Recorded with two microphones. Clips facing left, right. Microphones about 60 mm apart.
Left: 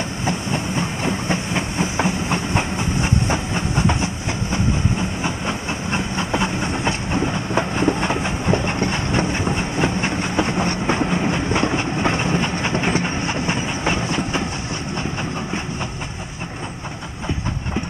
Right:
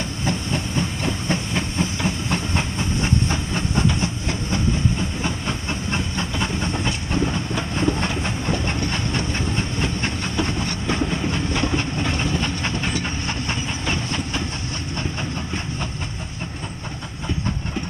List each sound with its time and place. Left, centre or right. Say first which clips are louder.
0.2 s train: left 1 dB; left